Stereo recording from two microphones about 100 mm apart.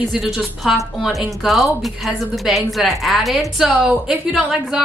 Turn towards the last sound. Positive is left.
turn(degrees=-5)  # may be behind; listen again after turning